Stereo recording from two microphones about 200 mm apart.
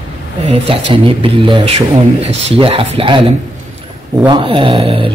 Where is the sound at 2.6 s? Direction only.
25° right (ahead or behind).